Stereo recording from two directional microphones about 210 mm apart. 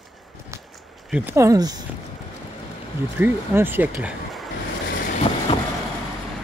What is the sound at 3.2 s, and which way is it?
Speech, 10° right (ahead or behind).